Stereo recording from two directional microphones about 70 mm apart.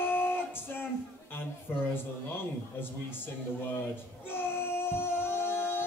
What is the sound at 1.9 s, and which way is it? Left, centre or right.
Speech, left.